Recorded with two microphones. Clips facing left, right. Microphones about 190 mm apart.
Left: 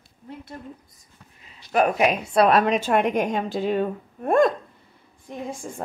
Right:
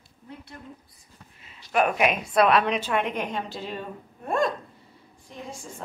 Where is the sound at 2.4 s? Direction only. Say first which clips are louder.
Left 3 dB; 45° left (ahead or behind).